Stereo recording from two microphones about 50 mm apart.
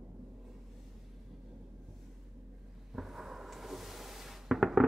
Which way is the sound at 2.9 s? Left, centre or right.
Centre.